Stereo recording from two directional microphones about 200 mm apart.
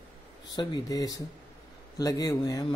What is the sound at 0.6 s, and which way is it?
A man's voice, 20° left (ahead or behind).